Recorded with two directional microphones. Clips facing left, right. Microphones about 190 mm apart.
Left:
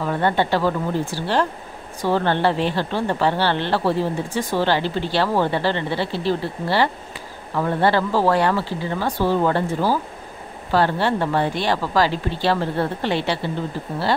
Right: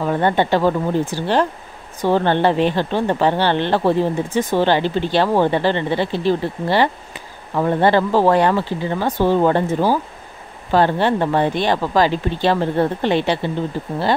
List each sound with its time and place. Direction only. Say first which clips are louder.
0.0 s speech: right 3 dB; 20° right (ahead or behind)